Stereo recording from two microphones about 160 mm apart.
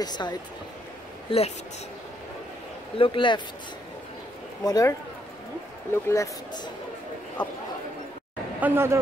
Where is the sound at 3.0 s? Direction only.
30° left (ahead or behind).